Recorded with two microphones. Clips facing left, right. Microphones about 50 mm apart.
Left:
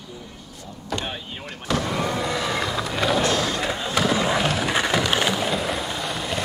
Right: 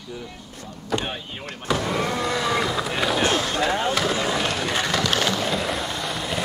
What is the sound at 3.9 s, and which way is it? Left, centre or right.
Skateboard, centre.